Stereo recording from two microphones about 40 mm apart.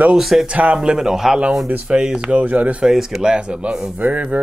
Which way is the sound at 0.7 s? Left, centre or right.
Right.